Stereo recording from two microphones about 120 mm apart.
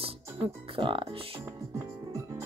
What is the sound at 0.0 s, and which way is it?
Speech, 50° right (ahead or behind).